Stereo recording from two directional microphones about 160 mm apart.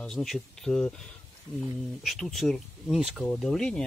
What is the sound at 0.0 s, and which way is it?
Speech, centre (ahead or behind).